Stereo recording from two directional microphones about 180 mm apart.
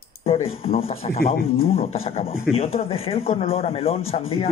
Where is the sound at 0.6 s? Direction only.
35° left (ahead or behind).